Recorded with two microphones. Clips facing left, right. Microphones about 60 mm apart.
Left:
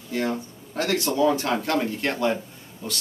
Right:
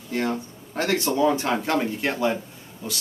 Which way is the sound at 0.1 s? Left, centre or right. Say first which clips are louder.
Right 1 dB; right.